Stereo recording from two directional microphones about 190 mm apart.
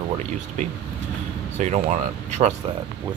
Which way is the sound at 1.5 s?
40° right (ahead or behind).